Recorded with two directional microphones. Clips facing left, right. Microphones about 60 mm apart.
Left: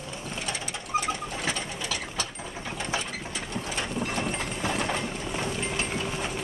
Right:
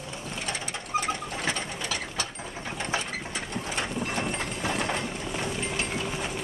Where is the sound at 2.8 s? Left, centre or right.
Right.